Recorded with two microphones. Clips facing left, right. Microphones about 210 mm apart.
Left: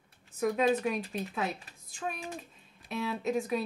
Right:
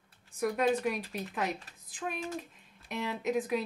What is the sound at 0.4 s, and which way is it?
Speech, 15° right (ahead or behind).